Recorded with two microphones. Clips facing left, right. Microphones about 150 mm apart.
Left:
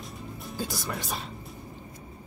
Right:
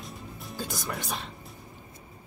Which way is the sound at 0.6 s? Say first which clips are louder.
Left 1 dB; centre (ahead or behind).